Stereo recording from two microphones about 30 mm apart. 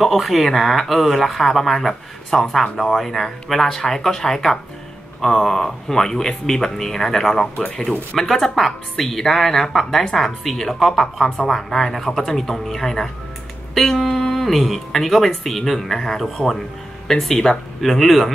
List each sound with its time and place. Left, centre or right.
0.0 s speech: centre
2.3 s speech: centre
13.7 s speech: centre
17.7 s speech: centre